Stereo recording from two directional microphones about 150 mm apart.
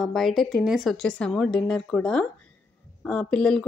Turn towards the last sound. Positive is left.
turn(degrees=5)  # may be behind; listen again after turning